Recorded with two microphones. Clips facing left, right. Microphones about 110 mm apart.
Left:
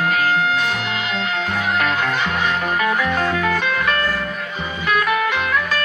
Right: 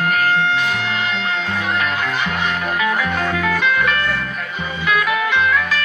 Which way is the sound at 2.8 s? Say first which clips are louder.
Even; 40° left (ahead or behind).